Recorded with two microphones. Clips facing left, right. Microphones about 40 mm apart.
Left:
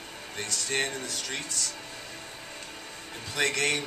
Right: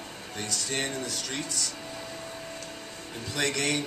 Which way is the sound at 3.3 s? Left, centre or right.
Centre.